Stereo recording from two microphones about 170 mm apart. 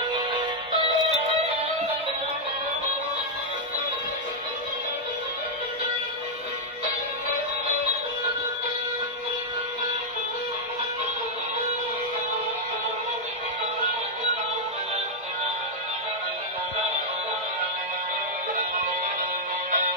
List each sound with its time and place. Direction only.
0.1 s music: 30° right (ahead or behind)